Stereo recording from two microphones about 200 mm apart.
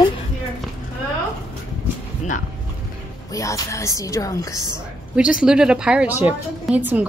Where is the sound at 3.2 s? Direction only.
15° left (ahead or behind).